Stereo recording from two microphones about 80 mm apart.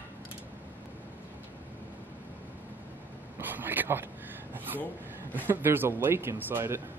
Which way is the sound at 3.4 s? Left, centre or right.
Right.